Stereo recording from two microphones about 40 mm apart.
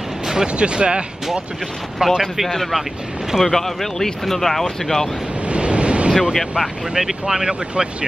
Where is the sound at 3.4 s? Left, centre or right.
Centre.